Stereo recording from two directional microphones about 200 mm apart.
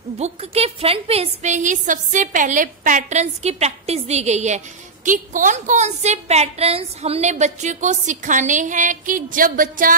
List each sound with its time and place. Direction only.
0.2 s a woman's voice: 30° right (ahead or behind)